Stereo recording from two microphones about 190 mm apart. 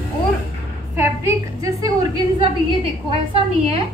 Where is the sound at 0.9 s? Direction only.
15° right (ahead or behind).